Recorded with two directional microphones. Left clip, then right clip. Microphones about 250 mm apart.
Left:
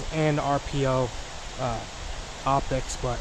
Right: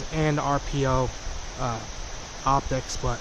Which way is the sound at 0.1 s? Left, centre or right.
Centre.